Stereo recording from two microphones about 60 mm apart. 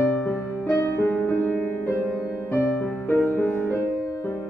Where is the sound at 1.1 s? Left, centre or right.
Left.